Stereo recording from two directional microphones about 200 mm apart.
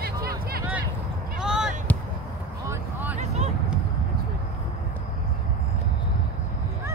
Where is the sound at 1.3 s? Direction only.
5° right (ahead or behind).